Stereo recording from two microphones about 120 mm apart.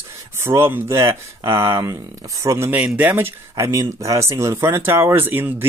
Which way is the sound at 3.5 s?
25° right (ahead or behind).